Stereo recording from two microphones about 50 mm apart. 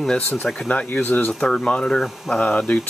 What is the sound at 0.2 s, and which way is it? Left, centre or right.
Speech, left.